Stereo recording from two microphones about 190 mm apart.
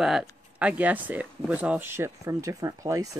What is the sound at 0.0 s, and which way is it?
Speech, centre (ahead or behind).